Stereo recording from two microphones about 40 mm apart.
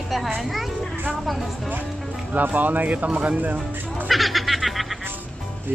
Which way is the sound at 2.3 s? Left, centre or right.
Right.